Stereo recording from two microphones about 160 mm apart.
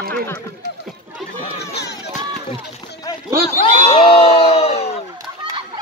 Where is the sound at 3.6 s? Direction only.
35° left (ahead or behind).